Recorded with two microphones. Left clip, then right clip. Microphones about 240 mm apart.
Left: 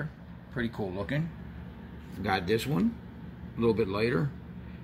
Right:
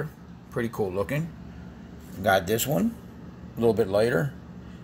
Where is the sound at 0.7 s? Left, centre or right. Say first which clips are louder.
Right 10 dB; centre.